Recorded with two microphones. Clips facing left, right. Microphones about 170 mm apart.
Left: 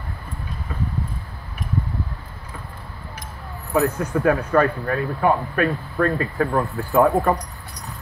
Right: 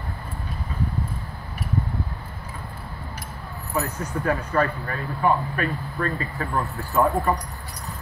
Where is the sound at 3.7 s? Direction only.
55° left (ahead or behind).